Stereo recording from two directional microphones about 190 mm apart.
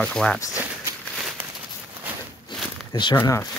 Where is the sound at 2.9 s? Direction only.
25° left (ahead or behind).